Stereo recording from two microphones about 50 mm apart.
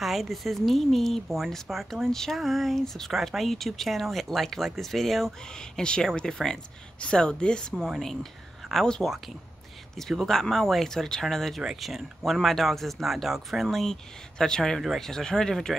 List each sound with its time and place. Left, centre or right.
0.0 s speech: centre
5.5 s speech: centre
8.0 s speech: centre